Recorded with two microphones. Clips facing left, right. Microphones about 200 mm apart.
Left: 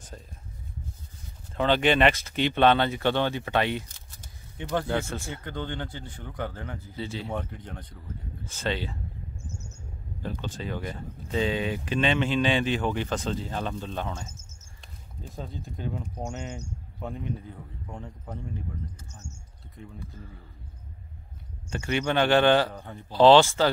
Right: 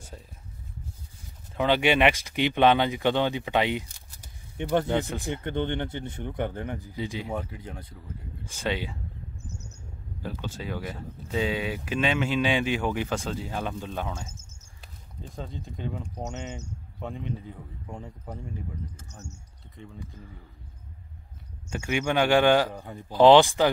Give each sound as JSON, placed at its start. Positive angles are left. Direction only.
{"t": 0.1, "sound": "speech", "side_deg": -5}
{"t": 1.5, "sound": "speech", "side_deg": -10}
{"t": 10.2, "sound": "speech", "side_deg": -10}
{"t": 15.3, "sound": "speech", "side_deg": 5}
{"t": 17.0, "sound": "speech", "side_deg": 0}
{"t": 18.9, "sound": "speech", "side_deg": -40}
{"t": 21.7, "sound": "speech", "side_deg": -10}